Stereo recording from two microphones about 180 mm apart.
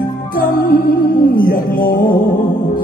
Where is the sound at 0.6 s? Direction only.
55° left (ahead or behind).